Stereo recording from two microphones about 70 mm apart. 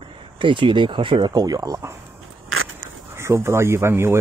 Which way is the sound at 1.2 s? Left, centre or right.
Right.